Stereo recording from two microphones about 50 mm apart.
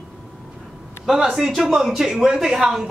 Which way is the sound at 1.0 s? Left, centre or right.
Centre.